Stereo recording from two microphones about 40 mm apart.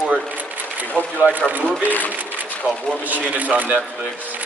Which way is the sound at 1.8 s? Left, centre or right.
Left.